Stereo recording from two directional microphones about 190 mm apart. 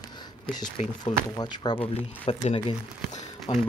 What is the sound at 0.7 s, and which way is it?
Speech, 25° left (ahead or behind).